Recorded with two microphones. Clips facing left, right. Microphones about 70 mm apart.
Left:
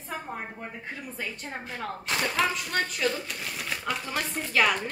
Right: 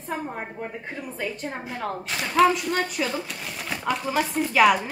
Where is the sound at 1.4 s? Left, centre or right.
Centre.